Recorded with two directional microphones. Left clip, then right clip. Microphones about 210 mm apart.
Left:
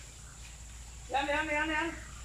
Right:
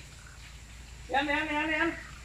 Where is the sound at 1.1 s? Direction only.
15° right (ahead or behind).